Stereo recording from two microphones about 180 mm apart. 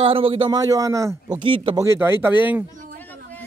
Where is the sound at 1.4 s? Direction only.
30° right (ahead or behind).